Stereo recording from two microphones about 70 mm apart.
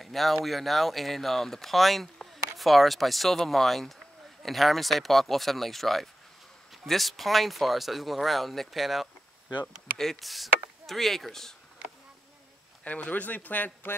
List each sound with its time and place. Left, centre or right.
0.0 s speech: centre
9.5 s speech: left
9.9 s speech: centre
12.8 s speech: left